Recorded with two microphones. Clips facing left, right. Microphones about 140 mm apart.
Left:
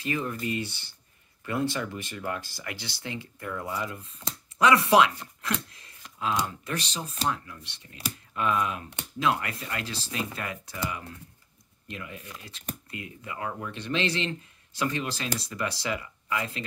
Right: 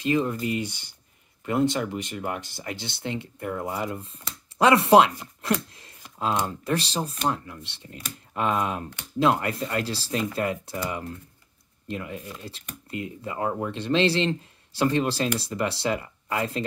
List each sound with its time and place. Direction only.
0.0 s speech: 20° right (ahead or behind)
5.4 s a sound: 30° right (ahead or behind)
6.4 s speech: 35° right (ahead or behind)